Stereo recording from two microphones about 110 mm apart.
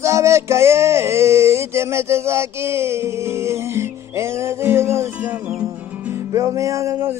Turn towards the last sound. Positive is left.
turn(degrees=-30)  # may be behind; listen again after turning